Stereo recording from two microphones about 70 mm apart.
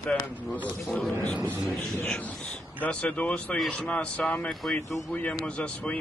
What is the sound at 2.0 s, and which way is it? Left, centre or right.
A man's voice, centre.